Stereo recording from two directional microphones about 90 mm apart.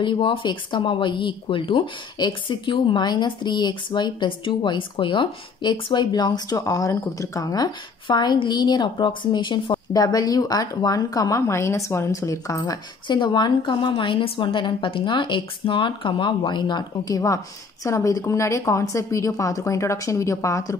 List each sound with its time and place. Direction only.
0.0 s speech: 65° left (ahead or behind)
9.9 s a woman's voice: 45° left (ahead or behind)
13.1 s speech: 55° left (ahead or behind)
17.1 s a woman's voice: 35° left (ahead or behind)